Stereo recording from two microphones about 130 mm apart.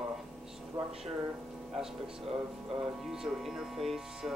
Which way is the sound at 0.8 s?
35° right (ahead or behind).